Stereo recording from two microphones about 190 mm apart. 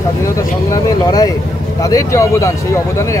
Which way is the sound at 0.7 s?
20° left (ahead or behind).